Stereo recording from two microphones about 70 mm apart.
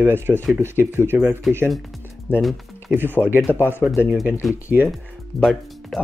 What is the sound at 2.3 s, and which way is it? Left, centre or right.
Speech, right.